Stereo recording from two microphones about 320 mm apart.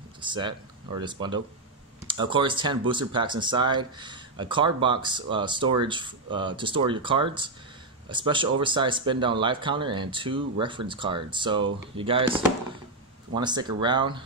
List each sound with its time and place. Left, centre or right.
0.2 s speech: centre